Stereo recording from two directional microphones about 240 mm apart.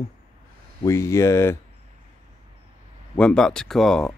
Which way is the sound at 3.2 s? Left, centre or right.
Centre.